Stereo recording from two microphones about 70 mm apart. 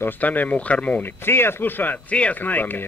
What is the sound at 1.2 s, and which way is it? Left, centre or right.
A man's voice, left.